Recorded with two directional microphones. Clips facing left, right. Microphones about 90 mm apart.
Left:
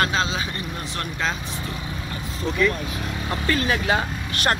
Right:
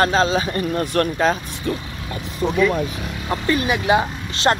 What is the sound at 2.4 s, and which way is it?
Speech, 90° right.